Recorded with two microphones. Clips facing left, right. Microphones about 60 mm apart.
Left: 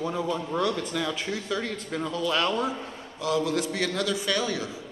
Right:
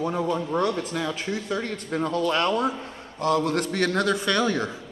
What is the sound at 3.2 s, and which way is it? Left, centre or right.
A man's voice, right.